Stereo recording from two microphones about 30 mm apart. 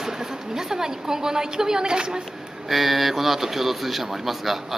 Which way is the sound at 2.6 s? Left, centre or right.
Centre.